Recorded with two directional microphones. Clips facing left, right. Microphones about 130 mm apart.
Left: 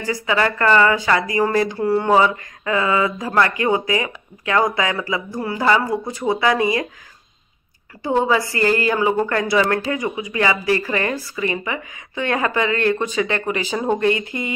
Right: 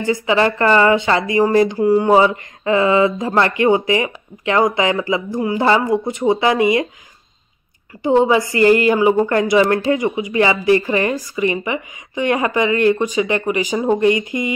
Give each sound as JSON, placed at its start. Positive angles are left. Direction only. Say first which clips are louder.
{"t": 0.0, "sound": "speech", "louder": "right 4 dB", "side_deg": -25}
{"t": 2.2, "sound": "speech", "louder": "right 4 dB", "side_deg": -25}
{"t": 8.0, "sound": "speech", "louder": "right 5 dB", "side_deg": -20}